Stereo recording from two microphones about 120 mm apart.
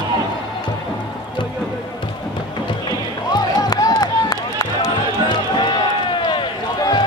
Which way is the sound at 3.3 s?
35° left (ahead or behind).